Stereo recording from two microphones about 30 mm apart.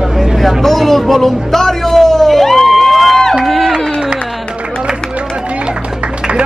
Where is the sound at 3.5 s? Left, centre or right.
Centre.